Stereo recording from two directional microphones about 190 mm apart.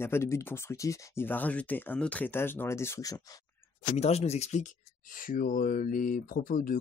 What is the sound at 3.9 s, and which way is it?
Speech, 35° left (ahead or behind).